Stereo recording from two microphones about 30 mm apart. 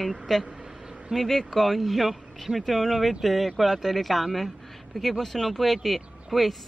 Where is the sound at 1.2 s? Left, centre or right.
Centre.